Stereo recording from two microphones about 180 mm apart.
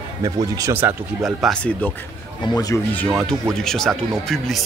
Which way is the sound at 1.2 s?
Centre (ahead or behind).